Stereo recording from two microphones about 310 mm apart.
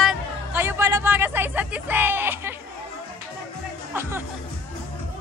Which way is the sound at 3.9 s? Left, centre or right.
Centre.